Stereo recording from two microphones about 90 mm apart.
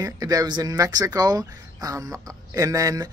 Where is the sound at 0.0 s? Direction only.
40° right (ahead or behind).